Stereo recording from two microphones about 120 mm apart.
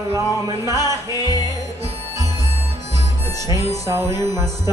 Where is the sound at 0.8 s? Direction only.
35° left (ahead or behind).